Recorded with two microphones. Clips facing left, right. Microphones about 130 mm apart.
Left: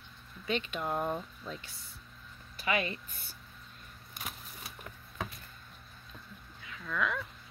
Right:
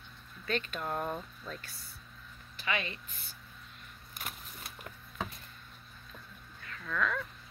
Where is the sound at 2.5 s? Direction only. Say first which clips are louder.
Left 4 dB; 35° left (ahead or behind).